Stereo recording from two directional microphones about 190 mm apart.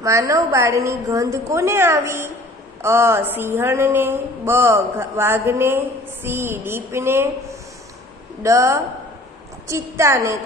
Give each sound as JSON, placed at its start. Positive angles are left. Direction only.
{"t": 0.0, "sound": "speech", "side_deg": -15}
{"t": 8.4, "sound": "speech", "side_deg": -15}